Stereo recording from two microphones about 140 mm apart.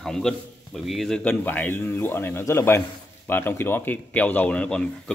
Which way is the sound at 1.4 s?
15° left (ahead or behind).